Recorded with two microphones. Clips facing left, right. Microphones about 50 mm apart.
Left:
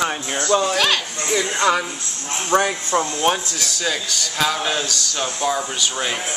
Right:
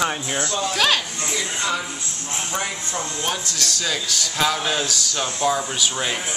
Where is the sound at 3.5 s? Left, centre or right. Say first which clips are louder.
Left 1 dB; centre.